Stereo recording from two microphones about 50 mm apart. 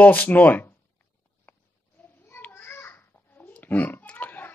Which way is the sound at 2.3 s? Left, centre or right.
Left.